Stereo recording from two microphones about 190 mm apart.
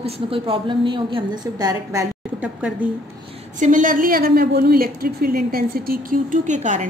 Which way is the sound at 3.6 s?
45° right (ahead or behind).